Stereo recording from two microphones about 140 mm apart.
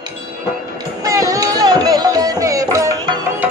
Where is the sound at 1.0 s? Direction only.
25° right (ahead or behind).